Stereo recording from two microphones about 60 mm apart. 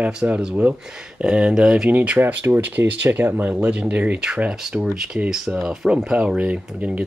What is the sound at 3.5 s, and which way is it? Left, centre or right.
Speech, right.